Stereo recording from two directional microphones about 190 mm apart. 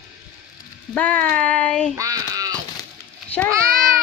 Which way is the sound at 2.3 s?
20° right (ahead or behind).